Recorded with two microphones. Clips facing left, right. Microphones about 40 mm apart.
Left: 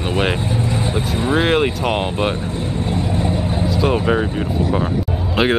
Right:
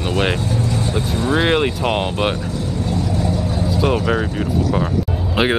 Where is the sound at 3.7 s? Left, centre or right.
Centre.